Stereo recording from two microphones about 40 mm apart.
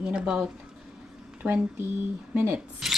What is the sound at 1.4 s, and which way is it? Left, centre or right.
Speech, right.